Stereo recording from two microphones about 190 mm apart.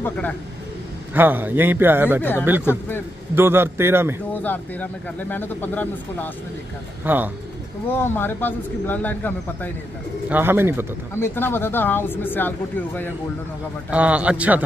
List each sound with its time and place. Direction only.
1.1 s a man's voice: 10° right (ahead or behind)
2.6 s speech: 15° left (ahead or behind)
3.3 s a man's voice: 10° right (ahead or behind)
4.3 s speech: 10° left (ahead or behind)
7.0 s a man's voice: 10° right (ahead or behind)
7.9 s speech: 10° left (ahead or behind)
10.3 s a man's voice: 10° right (ahead or behind)
11.1 s speech: 10° left (ahead or behind)
13.8 s a man's voice: 5° right (ahead or behind)